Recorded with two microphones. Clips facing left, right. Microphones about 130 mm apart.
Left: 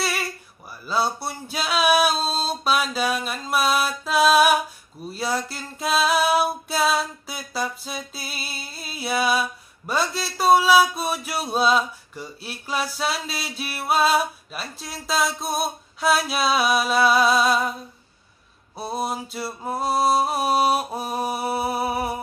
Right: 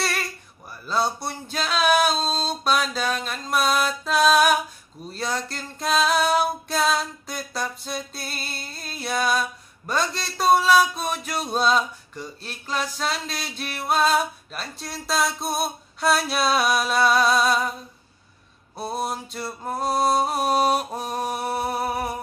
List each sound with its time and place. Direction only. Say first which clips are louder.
0.0 s a sound: left 1 dB; 5° left (ahead or behind)
0.8 s female singing: even; 5° left (ahead or behind)
18.8 s female singing: left 1 dB; centre (ahead or behind)